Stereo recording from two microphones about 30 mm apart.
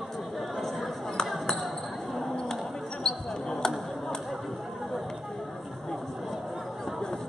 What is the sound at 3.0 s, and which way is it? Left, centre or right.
Basketball bounce, centre.